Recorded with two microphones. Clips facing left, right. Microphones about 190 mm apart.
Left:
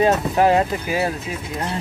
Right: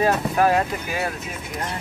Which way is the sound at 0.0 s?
20° left (ahead or behind).